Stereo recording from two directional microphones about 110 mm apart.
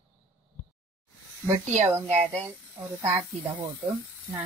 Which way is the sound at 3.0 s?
30° right (ahead or behind).